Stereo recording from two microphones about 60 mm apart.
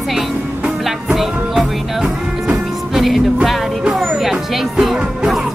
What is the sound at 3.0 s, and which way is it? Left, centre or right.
Music, centre.